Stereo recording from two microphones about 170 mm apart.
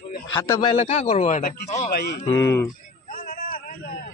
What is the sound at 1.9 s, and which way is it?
Speech, 70° left (ahead or behind).